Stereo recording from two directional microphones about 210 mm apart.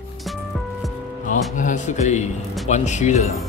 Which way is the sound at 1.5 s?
35° left (ahead or behind).